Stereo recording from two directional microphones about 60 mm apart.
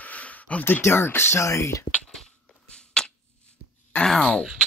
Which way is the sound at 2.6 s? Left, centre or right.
Centre.